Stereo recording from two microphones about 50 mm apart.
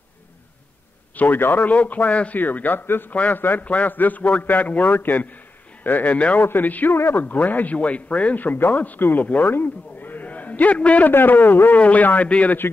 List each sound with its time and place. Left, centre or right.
1.1 s speech: left
1.7 s speech: left
6.1 s speech: left
6.4 s speech: left
6.9 s speech: left
7.2 s speech: left
9.5 s a sound: left
11.1 s speech: left
11.8 s speech: left